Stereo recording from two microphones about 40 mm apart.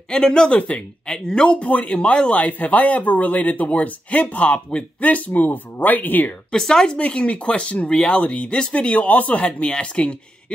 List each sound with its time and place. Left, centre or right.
0.1 s speech: centre
1.7 s speech: left
2.0 s speech: left
6.5 s speech: centre
7.0 s speech: left